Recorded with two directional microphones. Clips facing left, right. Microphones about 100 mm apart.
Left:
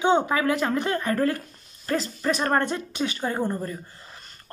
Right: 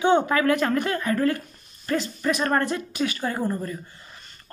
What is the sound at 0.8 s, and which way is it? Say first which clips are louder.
A woman's voice: even; 35° left (ahead or behind).